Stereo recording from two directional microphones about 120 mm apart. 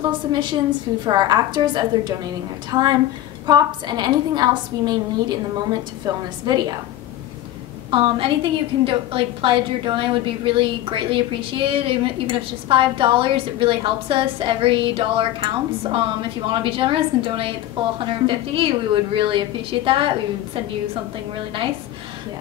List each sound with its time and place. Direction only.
0.3 s a woman's voice: 40° right (ahead or behind)
7.9 s a woman's voice: 45° right (ahead or behind)